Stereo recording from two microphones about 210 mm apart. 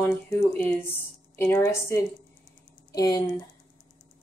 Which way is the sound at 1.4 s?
10° left (ahead or behind).